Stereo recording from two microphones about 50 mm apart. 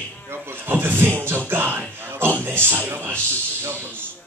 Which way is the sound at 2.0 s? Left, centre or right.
Right.